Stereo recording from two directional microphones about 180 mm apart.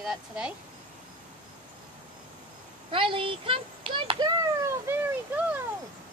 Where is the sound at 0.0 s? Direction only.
5° right (ahead or behind).